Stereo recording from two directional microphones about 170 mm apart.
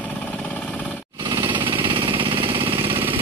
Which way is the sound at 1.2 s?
25° right (ahead or behind).